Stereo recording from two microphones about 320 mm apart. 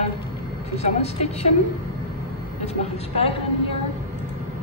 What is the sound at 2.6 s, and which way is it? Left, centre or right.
Speech, centre.